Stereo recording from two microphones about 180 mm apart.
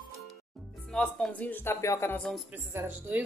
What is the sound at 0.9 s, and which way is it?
Speech, 5° left (ahead or behind).